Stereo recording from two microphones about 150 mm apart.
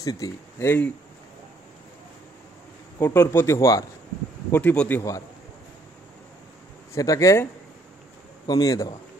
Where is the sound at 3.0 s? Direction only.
15° left (ahead or behind).